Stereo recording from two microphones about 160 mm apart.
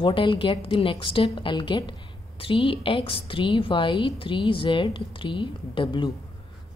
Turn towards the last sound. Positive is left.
turn(degrees=30)  # may be behind; listen again after turning